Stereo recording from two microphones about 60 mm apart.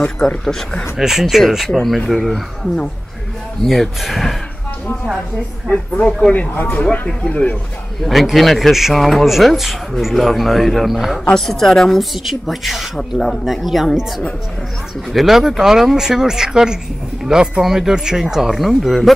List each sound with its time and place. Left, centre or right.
0.0 s speech: centre
0.5 s speech: centre
0.9 s a man's voice: centre
5.7 s speech: left
8.0 s a man's voice: centre